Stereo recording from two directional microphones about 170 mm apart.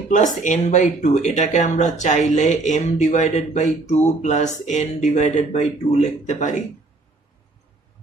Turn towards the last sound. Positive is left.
turn(degrees=45)  # may be behind; listen again after turning